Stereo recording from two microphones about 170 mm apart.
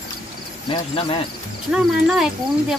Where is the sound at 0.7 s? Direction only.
30° left (ahead or behind).